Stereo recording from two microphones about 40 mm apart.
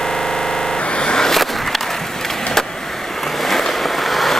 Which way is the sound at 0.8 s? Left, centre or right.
Left.